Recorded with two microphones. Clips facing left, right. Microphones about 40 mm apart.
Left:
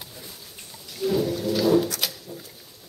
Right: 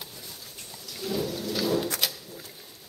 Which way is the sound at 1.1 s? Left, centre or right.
Centre.